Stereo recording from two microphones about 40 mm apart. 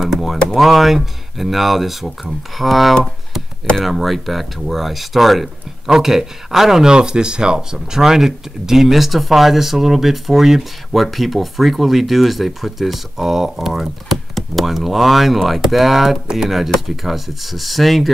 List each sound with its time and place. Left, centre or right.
0.6 s speech: centre
14.3 s speech: centre